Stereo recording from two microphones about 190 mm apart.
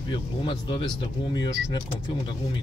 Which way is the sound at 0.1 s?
25° left (ahead or behind).